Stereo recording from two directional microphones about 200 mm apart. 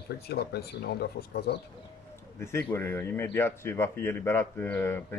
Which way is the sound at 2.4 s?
10° left (ahead or behind).